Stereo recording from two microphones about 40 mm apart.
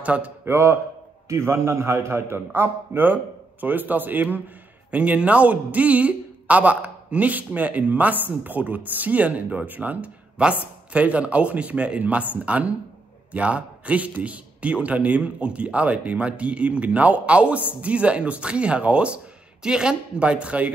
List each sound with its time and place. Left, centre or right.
0.0 s a man's voice: right
0.5 s a man's voice: right
3.6 s a man's voice: right
4.9 s a man's voice: right
10.4 s a man's voice: right
12.0 s a man's voice: right
19.6 s speech: centre